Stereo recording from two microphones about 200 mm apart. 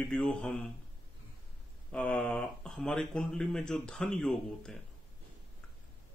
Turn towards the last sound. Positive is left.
turn(degrees=5)  # may be behind; listen again after turning